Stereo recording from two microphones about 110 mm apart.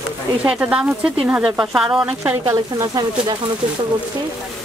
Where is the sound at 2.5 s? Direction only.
30° right (ahead or behind).